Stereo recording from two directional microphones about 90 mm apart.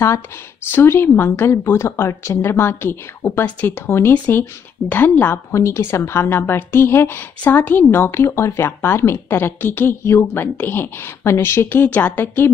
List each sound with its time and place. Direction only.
0.7 s a woman's voice: 25° left (ahead or behind)
5.5 s a woman's voice: 35° left (ahead or behind)